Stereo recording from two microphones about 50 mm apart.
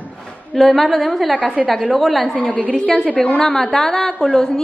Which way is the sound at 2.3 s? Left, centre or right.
Centre.